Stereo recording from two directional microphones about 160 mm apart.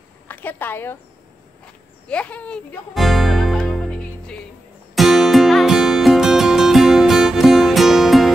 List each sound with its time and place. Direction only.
0.3 s a woman's voice: 10° left (ahead or behind)
2.0 s speech: 10° left (ahead or behind)
4.9 s music: centre (ahead or behind)